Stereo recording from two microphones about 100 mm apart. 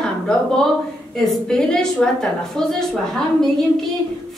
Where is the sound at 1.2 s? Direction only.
5° left (ahead or behind).